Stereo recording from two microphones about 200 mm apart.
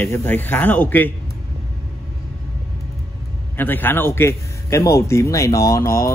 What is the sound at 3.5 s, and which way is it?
Speech, 10° left (ahead or behind).